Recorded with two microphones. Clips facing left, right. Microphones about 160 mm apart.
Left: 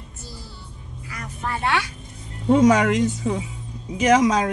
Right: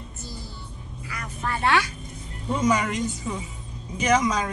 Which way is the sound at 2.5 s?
80° left.